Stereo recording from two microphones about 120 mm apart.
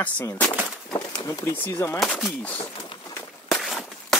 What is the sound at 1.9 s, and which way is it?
Speech, 5° left (ahead or behind).